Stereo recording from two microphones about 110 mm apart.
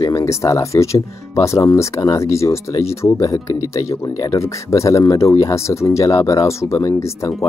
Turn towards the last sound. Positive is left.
turn(degrees=30)  # may be behind; listen again after turning